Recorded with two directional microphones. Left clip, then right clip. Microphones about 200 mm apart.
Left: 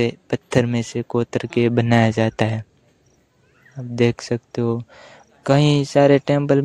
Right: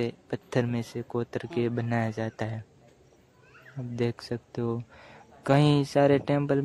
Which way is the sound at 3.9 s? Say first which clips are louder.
Left 12 dB; 35° left (ahead or behind).